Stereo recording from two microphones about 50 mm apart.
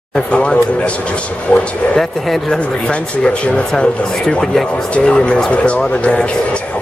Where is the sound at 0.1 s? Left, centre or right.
Left.